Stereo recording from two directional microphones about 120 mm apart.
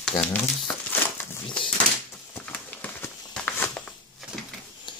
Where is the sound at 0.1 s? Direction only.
35° left (ahead or behind).